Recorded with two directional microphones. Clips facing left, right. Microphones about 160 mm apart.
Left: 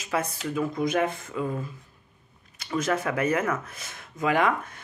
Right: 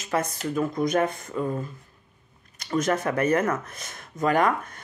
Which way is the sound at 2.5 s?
5° left (ahead or behind).